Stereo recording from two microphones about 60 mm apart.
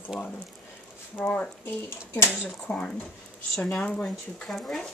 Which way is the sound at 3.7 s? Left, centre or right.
Left.